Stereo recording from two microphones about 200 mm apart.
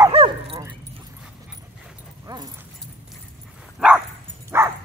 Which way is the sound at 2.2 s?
20° right (ahead or behind).